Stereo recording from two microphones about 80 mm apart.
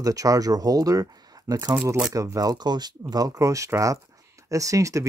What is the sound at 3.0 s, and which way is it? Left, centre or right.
Speech, right.